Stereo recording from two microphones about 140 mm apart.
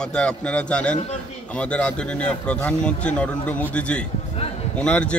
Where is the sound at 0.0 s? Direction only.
5° left (ahead or behind).